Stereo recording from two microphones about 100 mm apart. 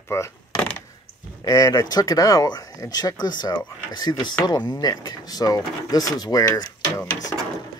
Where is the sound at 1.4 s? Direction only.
40° left (ahead or behind).